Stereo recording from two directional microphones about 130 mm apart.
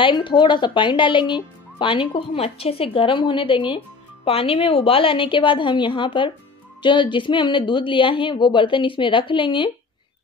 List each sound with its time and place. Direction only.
0.0 s speech: 40° left (ahead or behind)